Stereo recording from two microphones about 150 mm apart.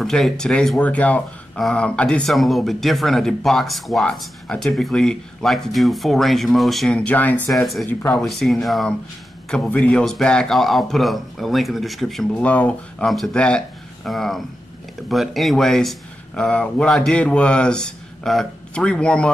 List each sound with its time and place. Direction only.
0.0 s speech: 5° left (ahead or behind)